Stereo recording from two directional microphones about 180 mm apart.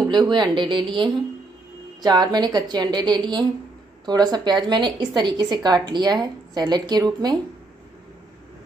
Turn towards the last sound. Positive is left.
turn(degrees=-20)  # may be behind; listen again after turning